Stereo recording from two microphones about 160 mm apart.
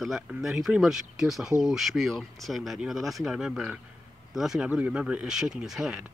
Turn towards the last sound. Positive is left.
turn(degrees=-5)  # may be behind; listen again after turning